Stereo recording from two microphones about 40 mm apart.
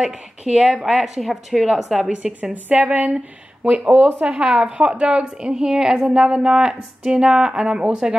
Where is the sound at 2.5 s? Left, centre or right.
Right.